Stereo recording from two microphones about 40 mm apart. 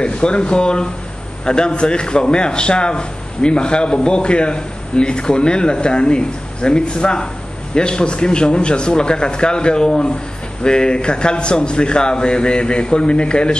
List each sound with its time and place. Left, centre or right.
0.0 s a man's voice: left